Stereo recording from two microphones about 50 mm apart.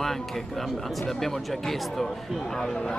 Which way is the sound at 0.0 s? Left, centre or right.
Centre.